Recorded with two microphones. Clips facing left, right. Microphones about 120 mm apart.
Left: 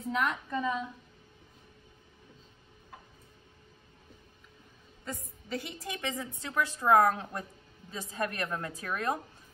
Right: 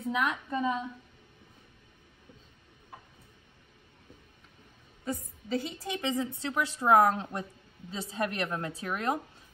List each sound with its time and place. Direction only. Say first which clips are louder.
0.0 s a woman's voice: right 1 dB; 5° right (ahead or behind)
0.5 s a woman's voice: right 2 dB; 25° right (ahead or behind)
5.0 s a woman's voice: right 6 dB; 25° right (ahead or behind)